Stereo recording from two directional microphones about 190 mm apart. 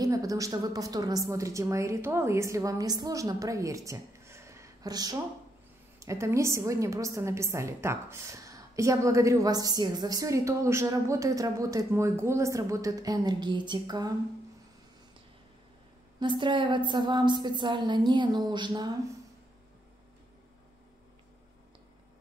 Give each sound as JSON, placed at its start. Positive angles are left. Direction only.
{"t": 0.0, "sound": "a woman's voice", "side_deg": -20}
{"t": 16.2, "sound": "a woman's voice", "side_deg": -25}